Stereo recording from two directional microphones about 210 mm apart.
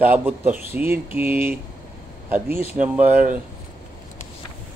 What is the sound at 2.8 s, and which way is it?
Speech, 5° right (ahead or behind).